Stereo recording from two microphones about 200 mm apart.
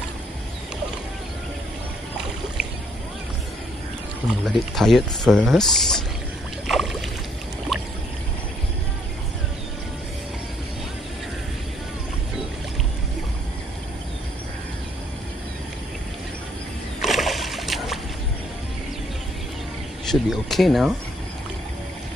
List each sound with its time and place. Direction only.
4.5 s speech: centre (ahead or behind)
6.7 s boat: centre (ahead or behind)
17.0 s boat: centre (ahead or behind)
20.1 s speech: centre (ahead or behind)